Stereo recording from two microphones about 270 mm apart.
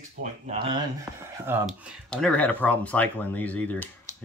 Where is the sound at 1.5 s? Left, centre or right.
Centre.